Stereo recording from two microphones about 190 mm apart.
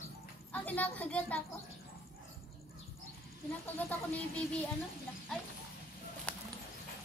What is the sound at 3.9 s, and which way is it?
Speech, 10° left (ahead or behind).